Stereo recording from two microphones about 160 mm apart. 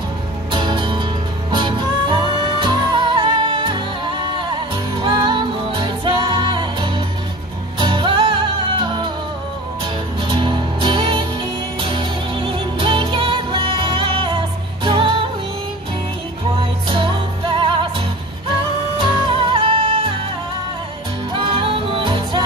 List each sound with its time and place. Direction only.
0.5 s music: 30° right (ahead or behind)
10.2 s music: 30° right (ahead or behind)
16.9 s music: 30° right (ahead or behind)
18.9 s music: 30° right (ahead or behind)
21.3 s music: 35° right (ahead or behind)